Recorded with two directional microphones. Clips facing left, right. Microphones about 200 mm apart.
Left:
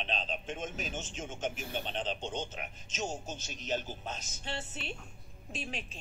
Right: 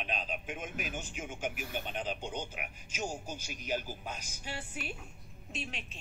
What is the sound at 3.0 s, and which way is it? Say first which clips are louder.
Speech: left 1 dB; 25° left (ahead or behind).